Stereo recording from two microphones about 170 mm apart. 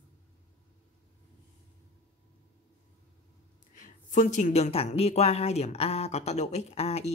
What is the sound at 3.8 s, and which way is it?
Speech, 50° left (ahead or behind).